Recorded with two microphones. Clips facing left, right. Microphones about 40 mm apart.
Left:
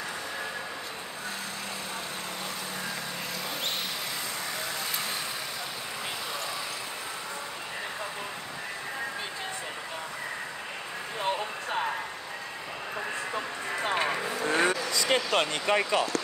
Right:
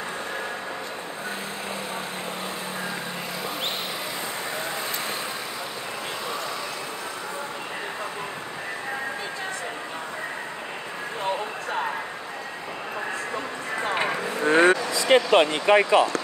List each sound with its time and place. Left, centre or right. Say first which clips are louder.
13.9 s vehicle: right 3 dB; centre
14.4 s vehicle: right 8 dB; right
14.8 s speech: right 7 dB; centre